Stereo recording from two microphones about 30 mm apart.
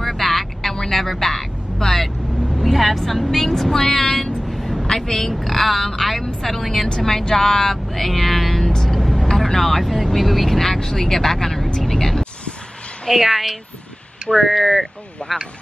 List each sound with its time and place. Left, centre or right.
0.0 s vehicle: centre
0.7 s speech: centre
2.6 s vehicle: centre
3.0 s speech: centre
4.5 s vehicle: centre
4.8 s a woman's voice: left
5.4 s speech: centre
8.7 s vehicle: centre
9.0 s vehicle: centre
9.6 s speech: centre
13.2 s speech: centre